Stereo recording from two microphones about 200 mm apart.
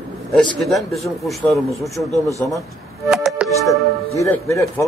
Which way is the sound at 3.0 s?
Centre (ahead or behind).